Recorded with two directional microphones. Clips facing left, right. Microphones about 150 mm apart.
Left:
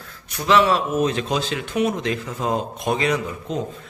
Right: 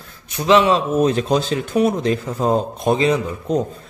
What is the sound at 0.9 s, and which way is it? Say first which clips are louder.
A man's voice: right 5 dB; 40° right (ahead or behind).